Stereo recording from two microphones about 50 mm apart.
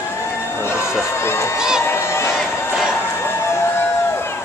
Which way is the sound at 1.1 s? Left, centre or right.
Left.